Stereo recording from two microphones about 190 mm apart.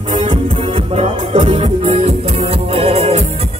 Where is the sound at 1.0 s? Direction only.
35° right (ahead or behind).